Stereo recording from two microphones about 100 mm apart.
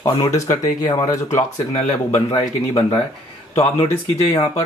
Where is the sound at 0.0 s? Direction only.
35° left (ahead or behind).